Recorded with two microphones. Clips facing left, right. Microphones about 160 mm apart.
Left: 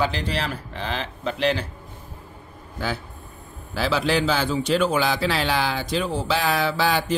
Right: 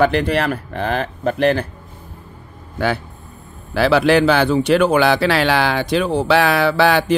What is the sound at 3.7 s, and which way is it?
A man's voice, 65° right (ahead or behind).